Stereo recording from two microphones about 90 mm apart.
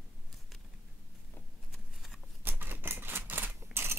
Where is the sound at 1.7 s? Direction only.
Centre (ahead or behind).